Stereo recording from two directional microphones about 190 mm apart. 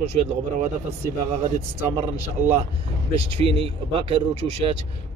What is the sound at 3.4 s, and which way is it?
Speech, 30° right (ahead or behind).